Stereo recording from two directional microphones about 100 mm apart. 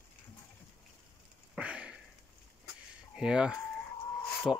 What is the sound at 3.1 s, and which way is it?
Speech, 10° right (ahead or behind).